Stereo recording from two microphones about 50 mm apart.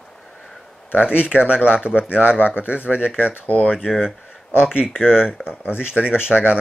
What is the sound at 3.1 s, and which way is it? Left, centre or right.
Speech, left.